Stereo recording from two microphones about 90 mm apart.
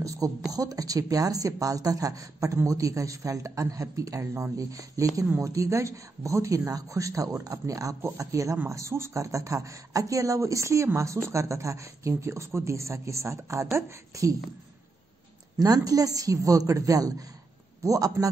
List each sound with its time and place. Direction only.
0.0 s a woman's voice: 40° right (ahead or behind)
15.6 s a woman's voice: 40° right (ahead or behind)